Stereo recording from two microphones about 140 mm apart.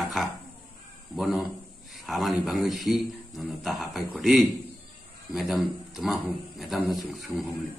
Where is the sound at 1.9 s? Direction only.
Centre (ahead or behind).